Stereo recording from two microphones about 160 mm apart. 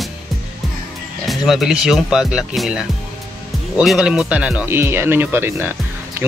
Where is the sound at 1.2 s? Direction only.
Centre (ahead or behind).